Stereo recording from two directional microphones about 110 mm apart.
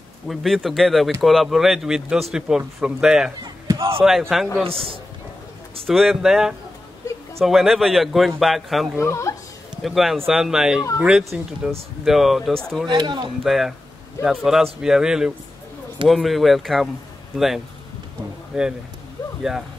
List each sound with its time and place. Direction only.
0.3 s a man's voice: centre (ahead or behind)
5.9 s a man's voice: centre (ahead or behind)
9.0 s speech: 25° left (ahead or behind)
9.8 s a man's voice: centre (ahead or behind)
12.8 s speech: 45° right (ahead or behind)
13.4 s a man's voice: centre (ahead or behind)
18.5 s a man's voice: 5° right (ahead or behind)